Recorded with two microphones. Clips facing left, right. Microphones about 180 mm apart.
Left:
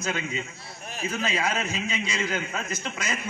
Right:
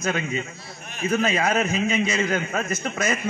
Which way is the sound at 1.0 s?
55° right (ahead or behind).